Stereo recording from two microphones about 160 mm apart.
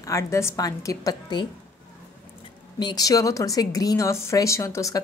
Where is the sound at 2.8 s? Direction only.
25° left (ahead or behind).